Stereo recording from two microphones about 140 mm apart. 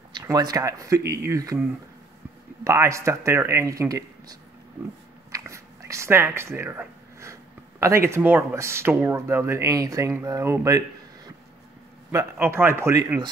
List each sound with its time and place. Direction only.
0.1 s speech: 30° right (ahead or behind)
2.6 s speech: 20° right (ahead or behind)
5.3 s a sound: 20° right (ahead or behind)
7.8 s speech: 20° right (ahead or behind)
12.1 s speech: 20° right (ahead or behind)